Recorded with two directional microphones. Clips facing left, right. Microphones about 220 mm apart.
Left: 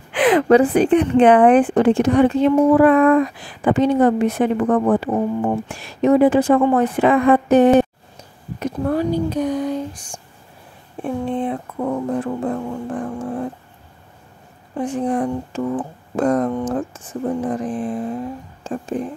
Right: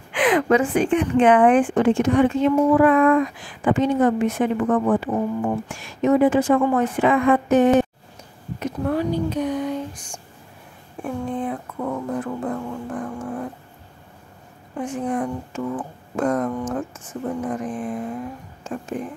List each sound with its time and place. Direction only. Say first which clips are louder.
0.1 s speech: left 5 dB; 35° left (ahead or behind)
14.8 s speech: left 4 dB; 35° left (ahead or behind)